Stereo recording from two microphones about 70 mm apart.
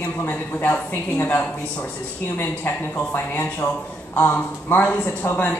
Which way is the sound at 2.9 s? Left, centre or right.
Left.